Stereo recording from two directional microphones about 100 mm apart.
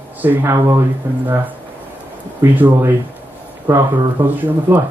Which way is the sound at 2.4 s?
20° right (ahead or behind).